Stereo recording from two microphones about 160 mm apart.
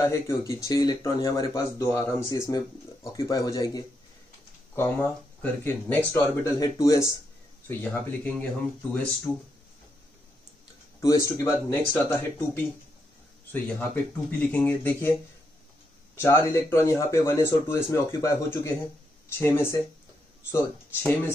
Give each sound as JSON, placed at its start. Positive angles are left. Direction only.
{"t": 0.0, "sound": "speech", "side_deg": 20}
{"t": 11.0, "sound": "speech", "side_deg": 20}
{"t": 13.5, "sound": "speech", "side_deg": 10}
{"t": 16.2, "sound": "speech", "side_deg": 15}